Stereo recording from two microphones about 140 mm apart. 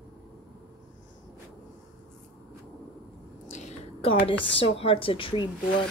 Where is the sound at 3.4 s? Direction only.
55° left (ahead or behind).